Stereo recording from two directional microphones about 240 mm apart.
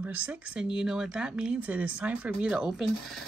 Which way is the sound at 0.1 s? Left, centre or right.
Centre.